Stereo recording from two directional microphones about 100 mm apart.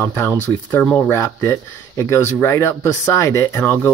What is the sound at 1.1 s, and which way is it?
Speech, 25° left (ahead or behind).